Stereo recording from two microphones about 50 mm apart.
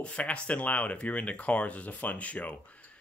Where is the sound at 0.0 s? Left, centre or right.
Left.